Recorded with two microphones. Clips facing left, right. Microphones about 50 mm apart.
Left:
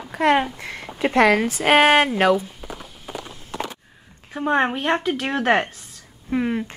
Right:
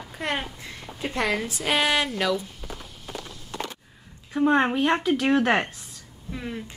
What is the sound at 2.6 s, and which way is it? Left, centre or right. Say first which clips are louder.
Walk: left 3 dB; centre.